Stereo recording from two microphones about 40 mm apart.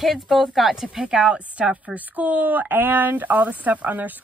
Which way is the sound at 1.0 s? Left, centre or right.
Right.